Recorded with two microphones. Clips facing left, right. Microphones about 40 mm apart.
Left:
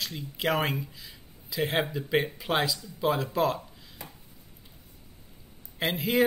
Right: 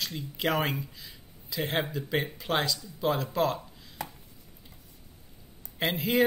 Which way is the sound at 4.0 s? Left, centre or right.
Right.